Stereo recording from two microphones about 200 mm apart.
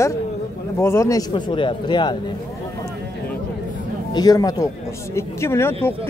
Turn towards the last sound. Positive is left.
turn(degrees=10)  # may be behind; listen again after turning